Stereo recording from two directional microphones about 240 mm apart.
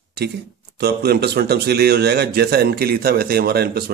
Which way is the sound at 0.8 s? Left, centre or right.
Right.